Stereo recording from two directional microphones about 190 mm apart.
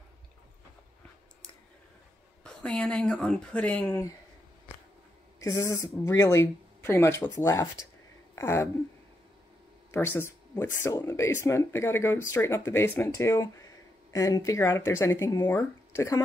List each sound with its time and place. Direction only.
2.4 s speech: 5° left (ahead or behind)
5.4 s speech: 15° left (ahead or behind)
9.8 s speech: 10° left (ahead or behind)